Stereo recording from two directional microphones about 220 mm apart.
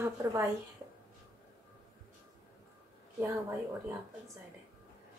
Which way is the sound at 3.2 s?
10° right (ahead or behind).